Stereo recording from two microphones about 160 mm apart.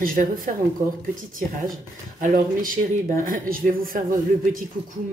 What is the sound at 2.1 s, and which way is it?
Speech, 55° right (ahead or behind).